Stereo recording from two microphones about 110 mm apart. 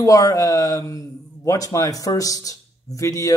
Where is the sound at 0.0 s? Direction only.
35° left (ahead or behind).